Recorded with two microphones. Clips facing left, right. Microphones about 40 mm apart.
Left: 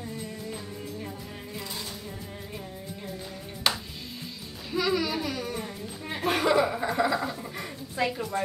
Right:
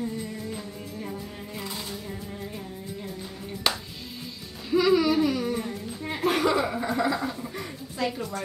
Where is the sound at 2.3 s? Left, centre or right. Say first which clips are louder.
Right 3 dB; centre.